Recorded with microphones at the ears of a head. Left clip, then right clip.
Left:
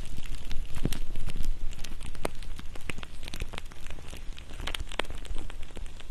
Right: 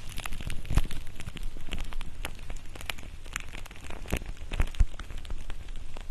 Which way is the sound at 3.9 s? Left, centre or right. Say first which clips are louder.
Right 13 dB; right.